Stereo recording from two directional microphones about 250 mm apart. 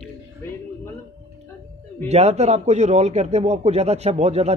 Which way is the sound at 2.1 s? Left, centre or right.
Right.